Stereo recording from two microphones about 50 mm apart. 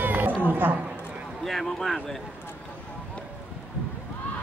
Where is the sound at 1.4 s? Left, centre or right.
Centre.